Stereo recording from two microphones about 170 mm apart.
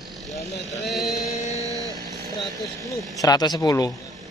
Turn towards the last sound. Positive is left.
turn(degrees=20)  # may be behind; listen again after turning